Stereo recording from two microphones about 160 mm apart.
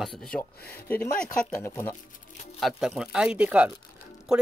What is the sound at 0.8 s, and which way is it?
Speech, 10° left (ahead or behind).